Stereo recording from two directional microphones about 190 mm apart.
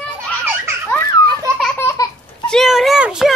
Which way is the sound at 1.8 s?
15° left (ahead or behind).